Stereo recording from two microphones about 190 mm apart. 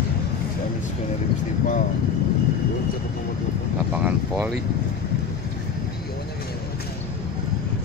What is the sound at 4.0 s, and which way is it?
Vehicle, 5° right (ahead or behind).